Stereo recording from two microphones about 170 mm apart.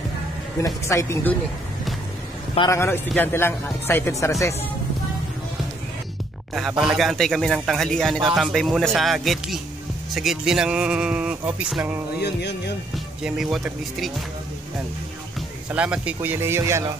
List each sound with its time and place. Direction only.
0.8 s speech: 15° left (ahead or behind)
2.7 s speech: 15° left (ahead or behind)
6.5 s speech: centre (ahead or behind)
12.2 s music: 80° left
12.9 s speech: centre (ahead or behind)
15.7 s speech: 5° right (ahead or behind)